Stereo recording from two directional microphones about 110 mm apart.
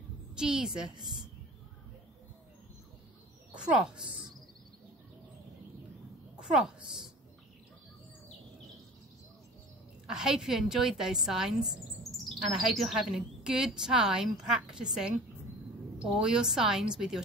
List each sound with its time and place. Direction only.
0.4 s a woman's voice: 5° right (ahead or behind)
0.9 s a woman's voice: 40° right (ahead or behind)
3.5 s speech: 10° right (ahead or behind)
6.4 s a woman's voice: 5° right (ahead or behind)
10.0 s speech: 5° right (ahead or behind)